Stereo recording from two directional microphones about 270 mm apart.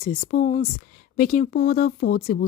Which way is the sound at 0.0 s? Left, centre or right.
Left.